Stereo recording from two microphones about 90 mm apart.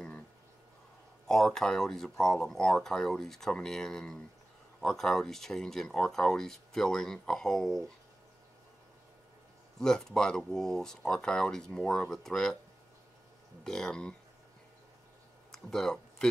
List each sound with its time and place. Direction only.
1.2 s speech: 5° left (ahead or behind)
9.8 s speech: 5° left (ahead or behind)
13.7 s speech: 5° left (ahead or behind)
15.5 s a sound: 5° left (ahead or behind)